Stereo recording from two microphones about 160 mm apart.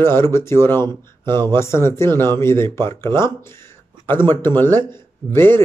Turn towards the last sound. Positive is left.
turn(degrees=15)  # may be behind; listen again after turning